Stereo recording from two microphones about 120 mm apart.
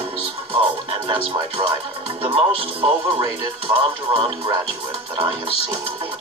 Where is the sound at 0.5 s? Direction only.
45° right (ahead or behind).